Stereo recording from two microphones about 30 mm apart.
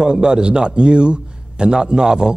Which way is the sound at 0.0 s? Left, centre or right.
Right.